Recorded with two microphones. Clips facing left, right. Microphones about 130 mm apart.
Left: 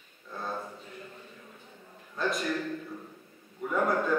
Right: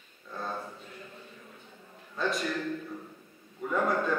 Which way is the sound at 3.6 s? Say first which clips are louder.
Left 1 dB; 10° left (ahead or behind).